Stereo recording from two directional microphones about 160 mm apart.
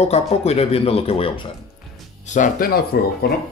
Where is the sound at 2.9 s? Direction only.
75° left (ahead or behind).